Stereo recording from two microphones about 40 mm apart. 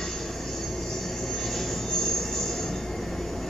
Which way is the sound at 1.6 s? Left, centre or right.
Centre.